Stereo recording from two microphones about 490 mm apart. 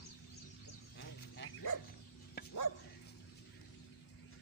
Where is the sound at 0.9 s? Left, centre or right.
Left.